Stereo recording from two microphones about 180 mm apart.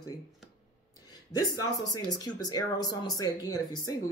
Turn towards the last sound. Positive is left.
turn(degrees=20)  # may be behind; listen again after turning